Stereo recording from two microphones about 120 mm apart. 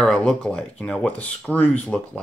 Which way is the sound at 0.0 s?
5° left (ahead or behind).